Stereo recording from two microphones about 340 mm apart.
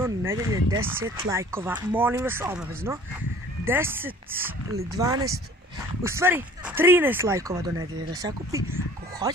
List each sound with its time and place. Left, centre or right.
0.0 s speech: centre